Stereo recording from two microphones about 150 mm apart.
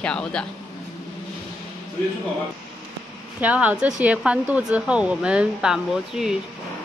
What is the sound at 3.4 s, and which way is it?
Speech, 10° right (ahead or behind).